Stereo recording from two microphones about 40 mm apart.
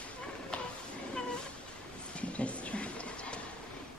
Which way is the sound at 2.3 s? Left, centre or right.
Left.